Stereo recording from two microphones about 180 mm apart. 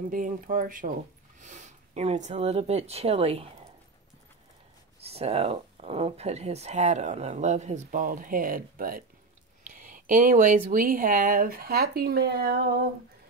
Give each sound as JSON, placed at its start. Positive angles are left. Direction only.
{"t": 0.1, "sound": "speech", "side_deg": -50}
{"t": 5.1, "sound": "speech", "side_deg": -35}